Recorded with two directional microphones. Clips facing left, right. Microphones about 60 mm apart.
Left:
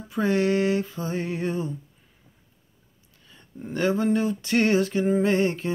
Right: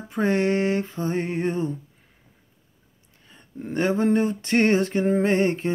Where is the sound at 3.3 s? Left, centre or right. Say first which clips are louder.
Right 3 dB; right.